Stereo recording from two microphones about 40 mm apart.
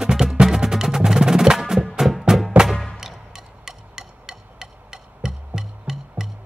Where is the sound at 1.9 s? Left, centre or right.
Centre.